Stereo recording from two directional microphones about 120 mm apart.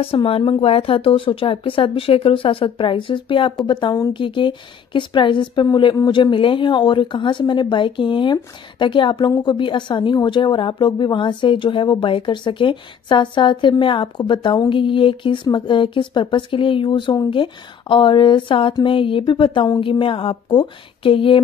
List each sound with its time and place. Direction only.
0.0 s a woman's voice: 50° left (ahead or behind)